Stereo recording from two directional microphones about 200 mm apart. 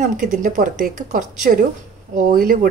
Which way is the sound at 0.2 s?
40° right (ahead or behind).